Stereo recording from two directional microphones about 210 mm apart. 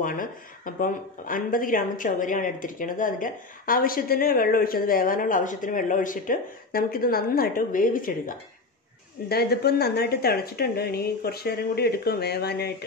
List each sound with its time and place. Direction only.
0.0 s speech: 40° left (ahead or behind)